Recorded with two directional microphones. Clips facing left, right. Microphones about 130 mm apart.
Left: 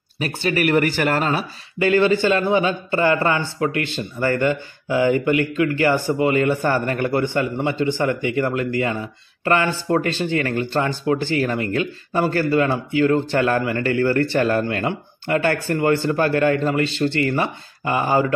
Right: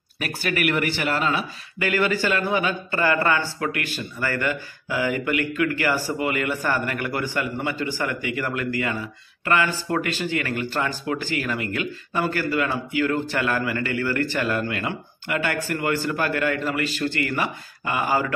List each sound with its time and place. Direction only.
0.2 s speech: 25° left (ahead or behind); by 1.4 s 40° left (ahead or behind)
1.8 s a man's voice: 25° left (ahead or behind)